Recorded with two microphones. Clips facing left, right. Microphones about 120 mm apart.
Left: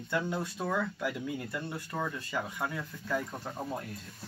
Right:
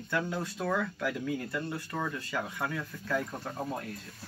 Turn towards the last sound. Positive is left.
turn(degrees=0)  # may be behind; listen again after turning